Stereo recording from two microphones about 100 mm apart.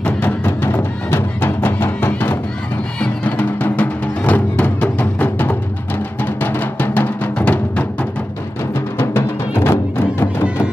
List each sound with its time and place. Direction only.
0.0 s music: 20° left (ahead or behind)
8.9 s music: 25° left (ahead or behind)